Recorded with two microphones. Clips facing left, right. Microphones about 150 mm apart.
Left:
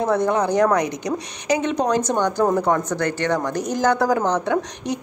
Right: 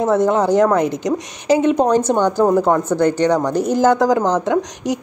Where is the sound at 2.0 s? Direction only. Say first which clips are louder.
Right 4 dB; 10° right (ahead or behind).